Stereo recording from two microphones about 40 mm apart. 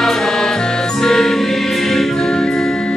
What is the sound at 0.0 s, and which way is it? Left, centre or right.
Music, centre.